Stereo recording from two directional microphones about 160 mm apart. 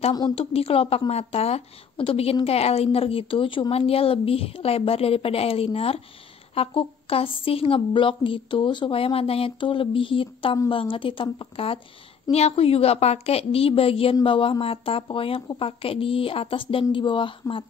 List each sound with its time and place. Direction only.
0.3 s a woman's voice: 40° left (ahead or behind)